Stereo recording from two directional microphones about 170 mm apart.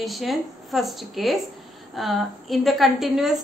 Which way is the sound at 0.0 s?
Centre (ahead or behind).